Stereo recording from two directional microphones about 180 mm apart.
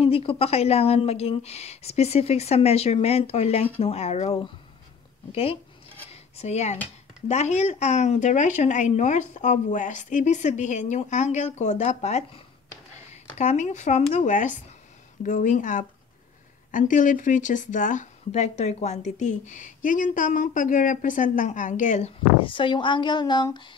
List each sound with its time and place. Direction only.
0.0 s speech: 35° left (ahead or behind)